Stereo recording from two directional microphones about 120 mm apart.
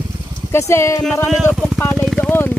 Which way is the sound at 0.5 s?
20° left (ahead or behind).